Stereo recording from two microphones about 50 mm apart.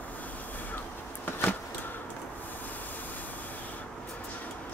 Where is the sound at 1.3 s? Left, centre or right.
Left.